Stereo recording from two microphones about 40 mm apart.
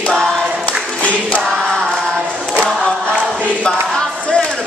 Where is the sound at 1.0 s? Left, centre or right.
Left.